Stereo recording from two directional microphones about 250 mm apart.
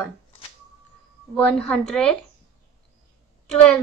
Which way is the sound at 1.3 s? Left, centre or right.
Centre.